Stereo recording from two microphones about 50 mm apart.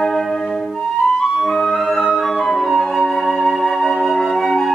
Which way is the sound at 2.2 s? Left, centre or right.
Centre.